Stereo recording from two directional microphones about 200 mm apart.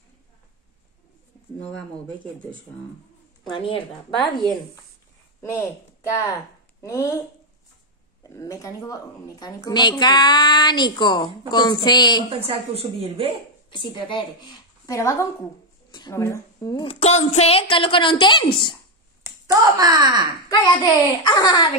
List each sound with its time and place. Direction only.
3.4 s a woman's voice: 25° left (ahead or behind)
5.4 s a woman's voice: 15° left (ahead or behind)
8.2 s a woman's voice: 15° left (ahead or behind)
12.3 s a woman's voice: 30° right (ahead or behind)
13.7 s a woman's voice: 25° left (ahead or behind)
16.8 s a woman's voice: 35° left (ahead or behind)
19.2 s a sound: 20° right (ahead or behind)
21.2 s a woman's voice: 20° left (ahead or behind)